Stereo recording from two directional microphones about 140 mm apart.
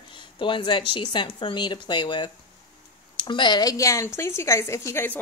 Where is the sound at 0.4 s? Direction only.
35° left (ahead or behind).